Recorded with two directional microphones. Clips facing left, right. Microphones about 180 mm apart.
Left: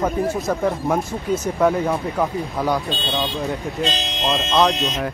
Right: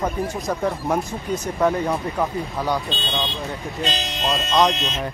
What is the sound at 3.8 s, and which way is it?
Speech, 15° left (ahead or behind).